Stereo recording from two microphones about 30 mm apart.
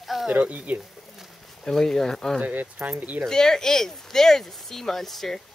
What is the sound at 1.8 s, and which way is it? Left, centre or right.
Speech, centre.